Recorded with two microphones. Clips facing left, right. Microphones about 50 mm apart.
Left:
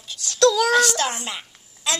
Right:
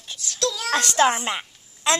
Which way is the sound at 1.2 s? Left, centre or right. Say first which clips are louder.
Right 5 dB; right.